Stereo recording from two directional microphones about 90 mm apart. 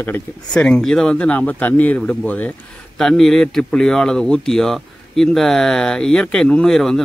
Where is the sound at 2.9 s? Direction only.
5° left (ahead or behind).